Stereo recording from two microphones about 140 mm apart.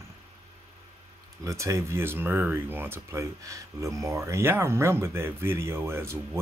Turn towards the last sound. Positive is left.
turn(degrees=-20)  # may be behind; listen again after turning